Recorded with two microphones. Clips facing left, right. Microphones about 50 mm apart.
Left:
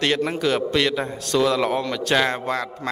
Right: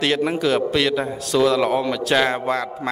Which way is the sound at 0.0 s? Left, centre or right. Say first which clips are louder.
Right 2 dB; centre.